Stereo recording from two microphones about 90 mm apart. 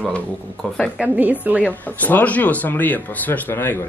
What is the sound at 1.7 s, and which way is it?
A woman's voice, 20° left (ahead or behind).